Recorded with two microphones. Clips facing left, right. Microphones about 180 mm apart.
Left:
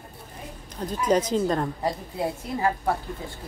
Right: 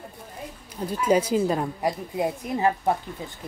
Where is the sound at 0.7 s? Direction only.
10° right (ahead or behind).